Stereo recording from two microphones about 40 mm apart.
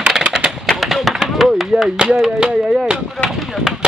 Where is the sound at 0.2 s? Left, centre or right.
Centre.